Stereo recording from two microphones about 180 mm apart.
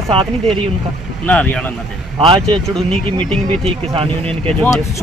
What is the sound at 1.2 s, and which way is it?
Speech, 10° left (ahead or behind).